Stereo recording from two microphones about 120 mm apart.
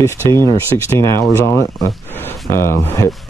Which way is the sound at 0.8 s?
25° left (ahead or behind).